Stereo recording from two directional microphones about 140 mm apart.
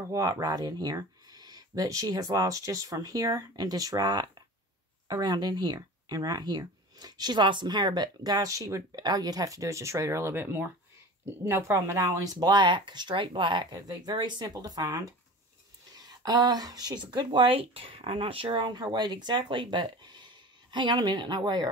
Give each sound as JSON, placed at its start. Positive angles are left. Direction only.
{"t": 0.0, "sound": "speech", "side_deg": -25}